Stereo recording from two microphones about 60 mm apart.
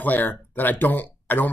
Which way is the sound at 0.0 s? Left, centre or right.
Left.